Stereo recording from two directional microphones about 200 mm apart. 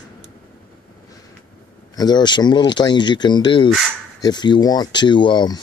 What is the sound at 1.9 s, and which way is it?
Speech, 20° left (ahead or behind).